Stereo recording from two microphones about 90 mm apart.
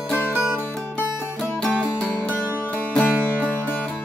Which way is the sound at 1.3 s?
15° left (ahead or behind).